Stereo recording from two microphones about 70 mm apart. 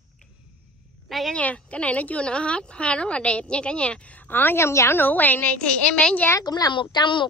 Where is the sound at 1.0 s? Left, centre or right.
Centre.